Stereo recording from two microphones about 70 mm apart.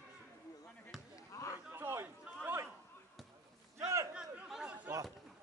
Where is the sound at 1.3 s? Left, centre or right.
Left.